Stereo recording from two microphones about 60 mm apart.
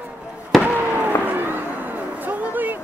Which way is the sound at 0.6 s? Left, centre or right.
Right.